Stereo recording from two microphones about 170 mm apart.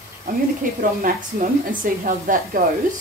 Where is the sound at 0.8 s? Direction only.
55° right (ahead or behind).